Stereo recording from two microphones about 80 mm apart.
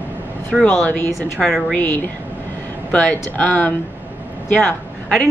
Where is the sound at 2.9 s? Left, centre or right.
Centre.